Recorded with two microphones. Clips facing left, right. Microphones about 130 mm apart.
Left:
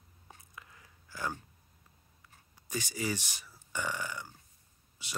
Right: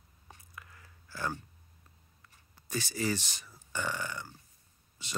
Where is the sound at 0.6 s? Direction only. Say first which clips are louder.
Right 3 dB; 15° left (ahead or behind).